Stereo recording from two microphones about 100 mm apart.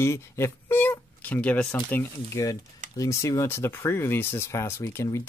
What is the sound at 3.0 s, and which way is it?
Speech, 30° left (ahead or behind).